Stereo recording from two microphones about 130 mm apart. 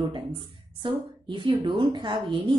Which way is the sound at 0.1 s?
40° right (ahead or behind).